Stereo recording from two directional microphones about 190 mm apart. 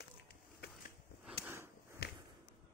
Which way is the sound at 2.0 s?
60° left (ahead or behind).